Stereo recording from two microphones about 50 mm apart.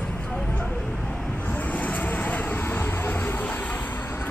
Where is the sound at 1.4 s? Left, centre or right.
Left.